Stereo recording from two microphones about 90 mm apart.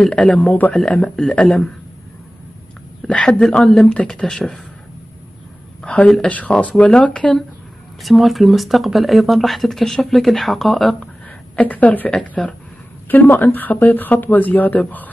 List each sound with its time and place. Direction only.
0.0 s speech: 10° left (ahead or behind)
0.7 s speech: 10° left (ahead or behind)
3.1 s speech: 10° left (ahead or behind)
5.8 s a woman's voice: 10° left (ahead or behind)
11.5 s speech: 15° left (ahead or behind)